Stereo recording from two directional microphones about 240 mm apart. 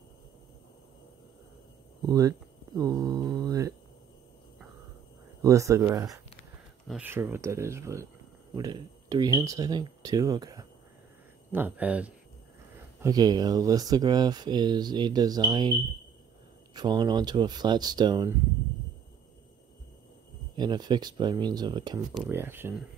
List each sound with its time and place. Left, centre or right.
2.0 s a sound: centre
5.4 s speech: centre
13.0 s speech: centre
16.7 s speech: centre
20.5 s speech: centre
22.1 s speech: centre